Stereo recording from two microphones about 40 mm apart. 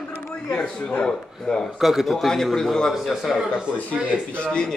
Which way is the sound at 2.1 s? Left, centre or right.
Centre.